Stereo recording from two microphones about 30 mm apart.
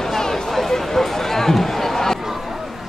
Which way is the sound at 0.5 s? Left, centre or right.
Centre.